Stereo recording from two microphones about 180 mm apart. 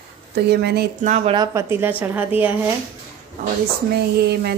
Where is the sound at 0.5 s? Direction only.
65° right (ahead or behind).